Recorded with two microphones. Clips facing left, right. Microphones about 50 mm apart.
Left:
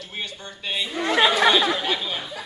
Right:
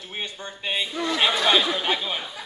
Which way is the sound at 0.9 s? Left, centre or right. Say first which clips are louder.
Left 5 dB; left.